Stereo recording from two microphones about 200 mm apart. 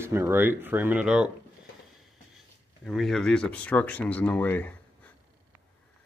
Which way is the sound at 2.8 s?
Centre (ahead or behind).